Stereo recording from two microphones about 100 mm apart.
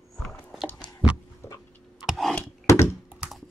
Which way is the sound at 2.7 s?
30° left (ahead or behind).